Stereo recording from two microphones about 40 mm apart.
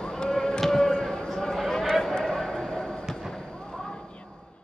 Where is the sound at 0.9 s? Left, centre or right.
Left.